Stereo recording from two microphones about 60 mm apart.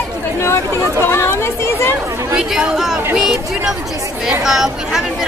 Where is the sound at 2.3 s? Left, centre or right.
Centre.